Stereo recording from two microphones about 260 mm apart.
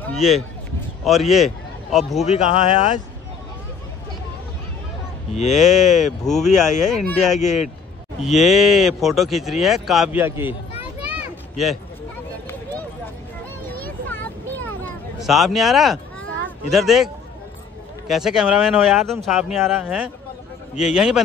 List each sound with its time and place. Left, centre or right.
0.0 s a man's voice: centre
2.2 s speech: left
5.3 s speech: left
5.6 s speech: centre
5.9 s speech: left
6.2 s speech: centre
7.3 s speech: left
8.2 s speech: centre
11.0 s a sound: centre
13.7 s a sound: centre
16.4 s speech: centre